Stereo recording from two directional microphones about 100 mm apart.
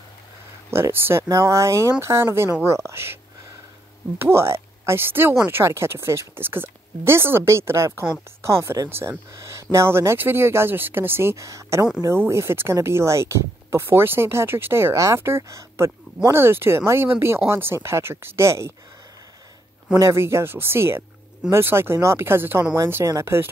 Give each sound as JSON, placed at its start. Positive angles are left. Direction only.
{"t": 0.7, "sound": "speech", "side_deg": -25}
{"t": 4.2, "sound": "speech", "side_deg": -25}
{"t": 19.9, "sound": "speech", "side_deg": -25}